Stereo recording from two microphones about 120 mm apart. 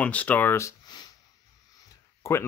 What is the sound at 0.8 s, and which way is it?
Sniff, 35° left (ahead or behind).